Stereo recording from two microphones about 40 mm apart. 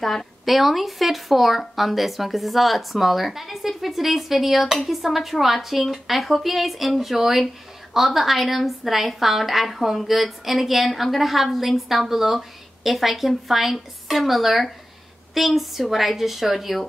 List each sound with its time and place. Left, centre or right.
0.0 s a woman's voice: centre